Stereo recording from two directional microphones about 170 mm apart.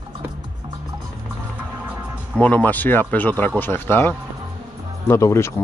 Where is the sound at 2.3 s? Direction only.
10° left (ahead or behind).